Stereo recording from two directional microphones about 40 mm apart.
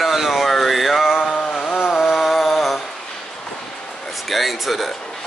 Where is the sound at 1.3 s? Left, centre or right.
Centre.